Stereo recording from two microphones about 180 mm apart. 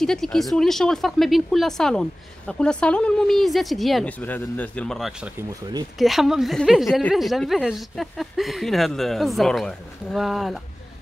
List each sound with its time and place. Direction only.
0.0 s speech: centre (ahead or behind)